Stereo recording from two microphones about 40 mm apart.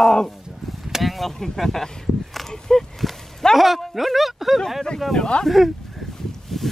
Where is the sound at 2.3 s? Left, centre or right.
Centre.